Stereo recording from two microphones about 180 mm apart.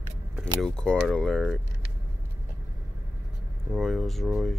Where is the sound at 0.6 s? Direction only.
5° left (ahead or behind).